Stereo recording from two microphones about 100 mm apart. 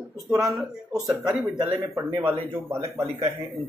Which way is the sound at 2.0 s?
30° right (ahead or behind).